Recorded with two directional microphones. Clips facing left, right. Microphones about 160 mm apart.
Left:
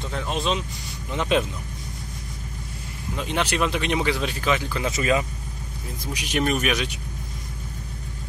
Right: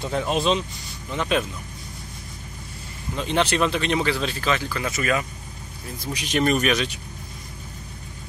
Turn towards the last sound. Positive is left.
turn(degrees=10)  # may be behind; listen again after turning